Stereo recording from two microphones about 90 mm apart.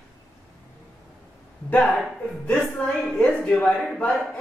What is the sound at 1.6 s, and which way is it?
Speech, 15° left (ahead or behind).